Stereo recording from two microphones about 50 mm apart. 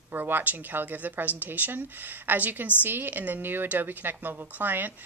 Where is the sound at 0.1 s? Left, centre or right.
Right.